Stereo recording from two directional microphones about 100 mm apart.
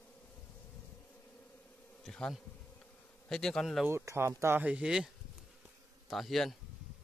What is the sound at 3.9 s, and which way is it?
Speech, 30° right (ahead or behind).